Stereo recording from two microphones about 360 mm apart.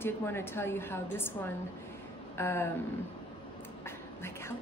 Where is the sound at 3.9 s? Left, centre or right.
Centre.